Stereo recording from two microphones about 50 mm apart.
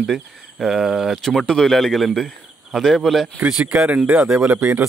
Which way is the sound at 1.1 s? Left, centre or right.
Centre.